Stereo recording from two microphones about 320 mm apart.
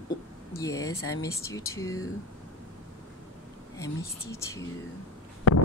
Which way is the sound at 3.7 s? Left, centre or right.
Centre.